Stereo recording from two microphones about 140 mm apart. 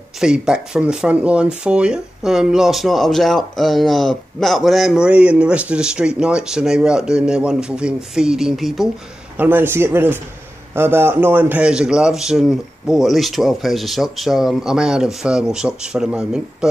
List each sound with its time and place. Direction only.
0.2 s speech: 5° right (ahead or behind)
9.4 s speech: 15° right (ahead or behind)